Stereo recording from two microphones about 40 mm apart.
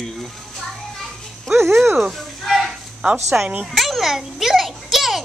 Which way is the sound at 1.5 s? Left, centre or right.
Right.